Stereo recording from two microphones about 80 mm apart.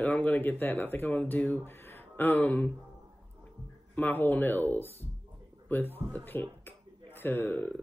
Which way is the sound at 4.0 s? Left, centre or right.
Left.